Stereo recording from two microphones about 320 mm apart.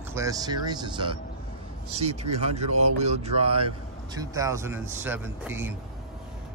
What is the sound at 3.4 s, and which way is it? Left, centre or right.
Speech, right.